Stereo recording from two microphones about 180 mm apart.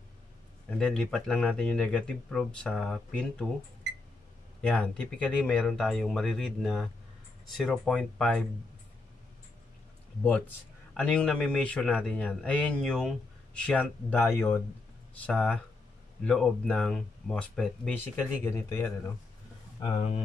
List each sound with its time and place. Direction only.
0.7 s speech: 5° left (ahead or behind)
4.6 s speech: 5° left (ahead or behind)
11.0 s speech: 5° left (ahead or behind)
19.8 s speech: 30° left (ahead or behind)